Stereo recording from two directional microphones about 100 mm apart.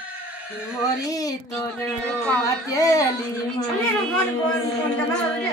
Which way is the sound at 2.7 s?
35° left (ahead or behind).